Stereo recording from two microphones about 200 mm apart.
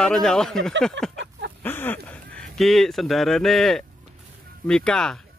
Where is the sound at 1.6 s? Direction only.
10° left (ahead or behind).